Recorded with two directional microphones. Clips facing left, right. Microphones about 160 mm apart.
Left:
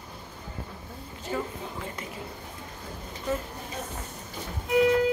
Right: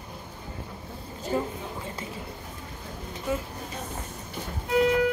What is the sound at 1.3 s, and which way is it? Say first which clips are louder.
Speech: right 4 dB; 35° right (ahead or behind).